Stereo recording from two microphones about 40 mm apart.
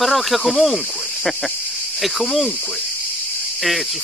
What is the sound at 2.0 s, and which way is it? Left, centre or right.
Speech, centre.